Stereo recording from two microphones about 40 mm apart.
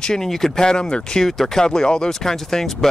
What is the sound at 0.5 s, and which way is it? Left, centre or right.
Speech, centre.